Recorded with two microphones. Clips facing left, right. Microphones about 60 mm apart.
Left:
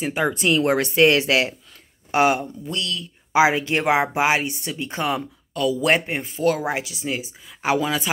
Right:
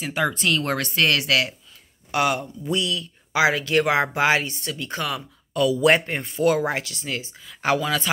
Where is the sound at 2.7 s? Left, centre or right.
Centre.